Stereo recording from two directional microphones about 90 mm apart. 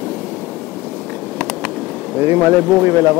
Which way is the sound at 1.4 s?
10° left (ahead or behind).